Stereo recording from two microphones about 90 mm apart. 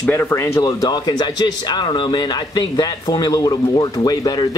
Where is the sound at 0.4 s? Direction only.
40° left (ahead or behind).